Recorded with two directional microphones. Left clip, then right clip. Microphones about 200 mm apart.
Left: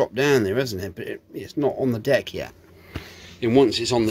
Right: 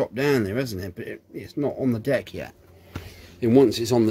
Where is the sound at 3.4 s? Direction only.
40° right (ahead or behind).